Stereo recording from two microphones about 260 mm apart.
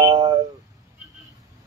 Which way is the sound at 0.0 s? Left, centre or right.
Centre.